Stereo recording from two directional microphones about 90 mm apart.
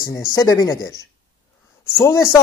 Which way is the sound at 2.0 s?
35° left (ahead or behind).